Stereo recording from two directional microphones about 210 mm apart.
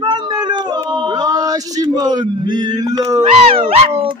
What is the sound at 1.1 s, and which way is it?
Male singing, 20° right (ahead or behind).